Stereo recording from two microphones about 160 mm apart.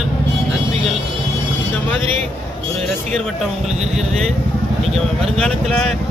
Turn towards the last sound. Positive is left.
turn(degrees=5)  # may be behind; listen again after turning